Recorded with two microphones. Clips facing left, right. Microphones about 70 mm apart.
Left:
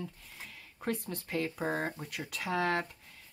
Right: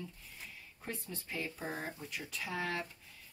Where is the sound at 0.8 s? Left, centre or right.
Left.